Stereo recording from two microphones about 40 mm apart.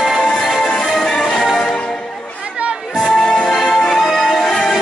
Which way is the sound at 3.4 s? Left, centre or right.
Centre.